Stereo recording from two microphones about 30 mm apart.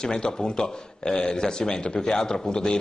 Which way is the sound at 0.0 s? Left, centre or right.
Left.